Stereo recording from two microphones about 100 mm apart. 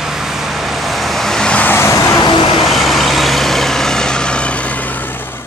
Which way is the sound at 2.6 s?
Centre (ahead or behind).